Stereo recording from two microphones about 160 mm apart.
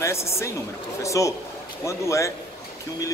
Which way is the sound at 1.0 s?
20° left (ahead or behind).